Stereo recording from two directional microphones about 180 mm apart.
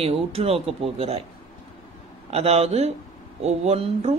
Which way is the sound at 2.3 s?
35° right (ahead or behind).